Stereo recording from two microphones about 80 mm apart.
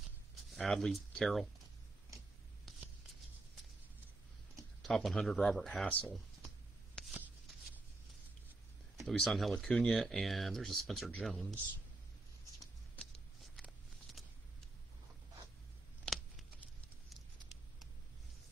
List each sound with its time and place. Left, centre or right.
0.6 s speech: centre
4.8 s speech: centre
5.9 s speech: centre
9.0 s speech: centre
13.0 s a sound: centre
16.1 s a sound: centre